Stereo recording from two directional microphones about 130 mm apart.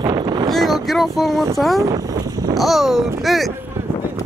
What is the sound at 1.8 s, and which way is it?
Speech, 30° right (ahead or behind).